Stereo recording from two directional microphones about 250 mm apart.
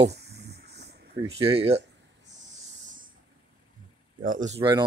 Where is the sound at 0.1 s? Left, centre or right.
Right.